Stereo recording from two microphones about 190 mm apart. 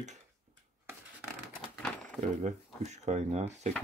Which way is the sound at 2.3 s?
40° right (ahead or behind).